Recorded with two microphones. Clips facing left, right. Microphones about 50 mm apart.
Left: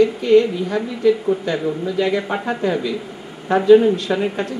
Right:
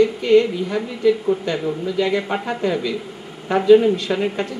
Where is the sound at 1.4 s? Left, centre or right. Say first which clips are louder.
Left 1 dB; centre.